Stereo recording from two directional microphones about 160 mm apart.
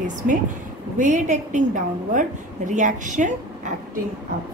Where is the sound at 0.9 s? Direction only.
50° right (ahead or behind).